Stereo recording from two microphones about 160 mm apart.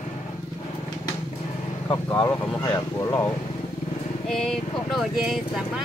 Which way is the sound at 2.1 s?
10° left (ahead or behind).